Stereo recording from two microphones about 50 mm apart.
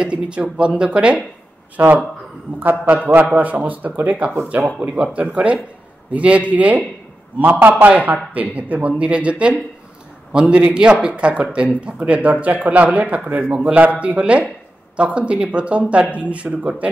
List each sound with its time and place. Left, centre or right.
0.0 s speech: right
1.8 s speech: right
4.8 s speech: right